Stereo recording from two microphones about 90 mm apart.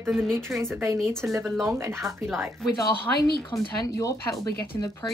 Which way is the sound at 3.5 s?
40° left (ahead or behind).